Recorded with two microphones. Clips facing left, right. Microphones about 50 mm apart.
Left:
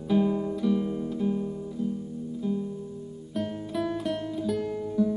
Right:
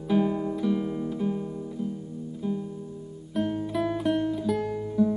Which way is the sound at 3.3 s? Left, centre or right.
Centre.